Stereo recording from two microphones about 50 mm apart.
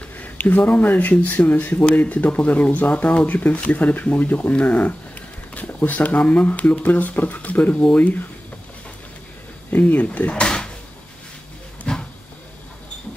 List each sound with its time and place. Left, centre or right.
0.2 s speech: left
9.7 s speech: left
11.9 s a sound: left